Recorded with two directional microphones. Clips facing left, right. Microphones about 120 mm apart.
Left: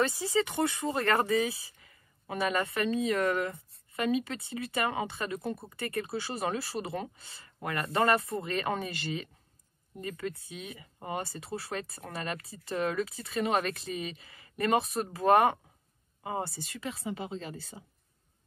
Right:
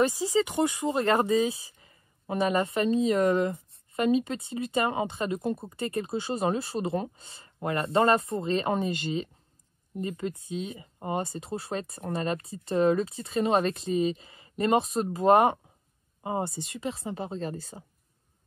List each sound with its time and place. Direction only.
0.0 s speech: 20° right (ahead or behind)
17.1 s speech: 40° right (ahead or behind)